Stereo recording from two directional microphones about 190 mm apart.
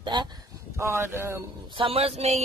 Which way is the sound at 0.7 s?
15° right (ahead or behind).